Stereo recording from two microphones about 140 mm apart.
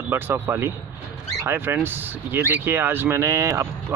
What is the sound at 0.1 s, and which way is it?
Speech, 15° right (ahead or behind).